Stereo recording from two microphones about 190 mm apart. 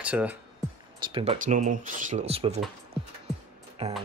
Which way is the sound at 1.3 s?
40° right (ahead or behind).